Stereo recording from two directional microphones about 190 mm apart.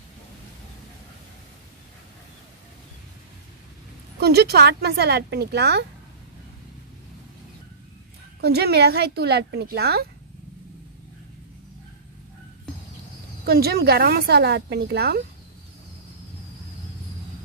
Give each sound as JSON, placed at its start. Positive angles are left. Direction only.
{"t": 4.2, "sound": "a woman's voice", "side_deg": -60}
{"t": 8.4, "sound": "a woman's voice", "side_deg": -55}
{"t": 13.5, "sound": "a woman's voice", "side_deg": -55}